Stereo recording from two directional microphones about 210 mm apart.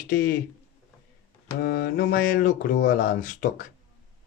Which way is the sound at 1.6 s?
50° left (ahead or behind).